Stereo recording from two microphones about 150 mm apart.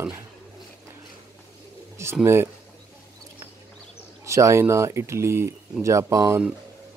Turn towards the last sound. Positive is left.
turn(degrees=-20)  # may be behind; listen again after turning